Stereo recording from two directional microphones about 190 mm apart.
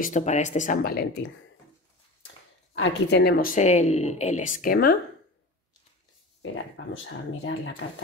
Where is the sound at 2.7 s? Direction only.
60° left (ahead or behind).